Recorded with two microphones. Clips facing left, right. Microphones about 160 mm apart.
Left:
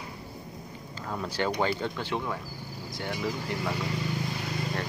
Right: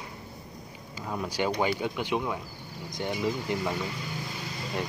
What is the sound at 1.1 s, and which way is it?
Speech, 10° right (ahead or behind).